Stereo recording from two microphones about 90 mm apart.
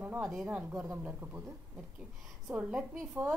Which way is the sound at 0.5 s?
20° right (ahead or behind).